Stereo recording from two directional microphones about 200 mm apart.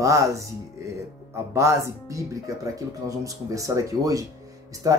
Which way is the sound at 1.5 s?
15° right (ahead or behind).